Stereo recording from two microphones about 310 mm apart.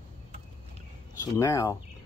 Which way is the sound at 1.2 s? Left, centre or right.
Centre.